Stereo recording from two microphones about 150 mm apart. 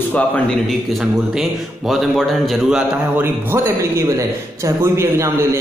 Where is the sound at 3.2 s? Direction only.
15° right (ahead or behind).